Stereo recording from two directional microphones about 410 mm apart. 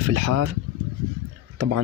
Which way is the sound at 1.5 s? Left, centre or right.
Right.